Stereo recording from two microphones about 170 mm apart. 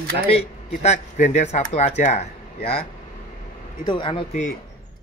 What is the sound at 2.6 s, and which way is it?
Speech, 70° left (ahead or behind).